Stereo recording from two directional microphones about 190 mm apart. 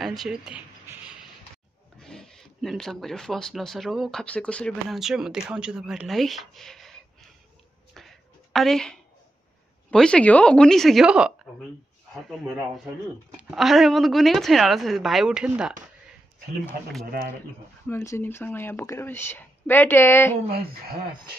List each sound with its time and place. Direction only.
0.2 s speech: 5° right (ahead or behind)
7.9 s a sound: centre (ahead or behind)
9.8 s speech: 5° left (ahead or behind)
13.4 s speech: 5° right (ahead or behind)
17.8 s speech: 15° left (ahead or behind)
20.4 s speech: 55° right (ahead or behind)